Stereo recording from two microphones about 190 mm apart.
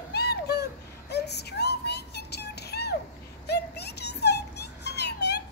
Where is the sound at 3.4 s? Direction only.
60° left (ahead or behind).